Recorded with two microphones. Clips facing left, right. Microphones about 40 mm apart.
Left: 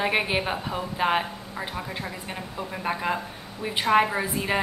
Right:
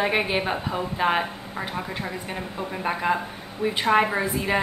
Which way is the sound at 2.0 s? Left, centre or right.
Centre.